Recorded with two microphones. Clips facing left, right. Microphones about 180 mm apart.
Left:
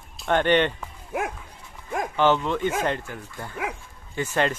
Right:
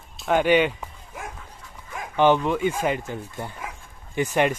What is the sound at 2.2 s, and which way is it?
Speech, 15° right (ahead or behind).